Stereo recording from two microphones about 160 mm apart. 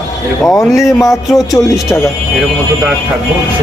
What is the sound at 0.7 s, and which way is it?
Speech, centre (ahead or behind).